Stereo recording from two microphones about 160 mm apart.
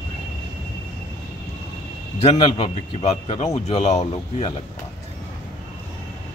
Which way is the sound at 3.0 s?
45° left (ahead or behind).